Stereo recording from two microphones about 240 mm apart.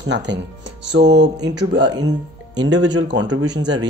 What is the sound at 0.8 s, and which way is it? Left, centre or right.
Speech, right.